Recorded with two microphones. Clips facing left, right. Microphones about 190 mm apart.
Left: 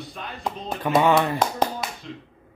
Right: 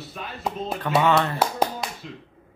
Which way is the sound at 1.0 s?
15° left (ahead or behind).